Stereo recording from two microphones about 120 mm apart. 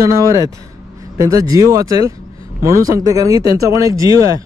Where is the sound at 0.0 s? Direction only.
30° right (ahead or behind).